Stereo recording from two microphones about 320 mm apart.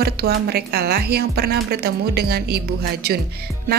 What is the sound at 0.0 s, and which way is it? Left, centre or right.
Speech, right.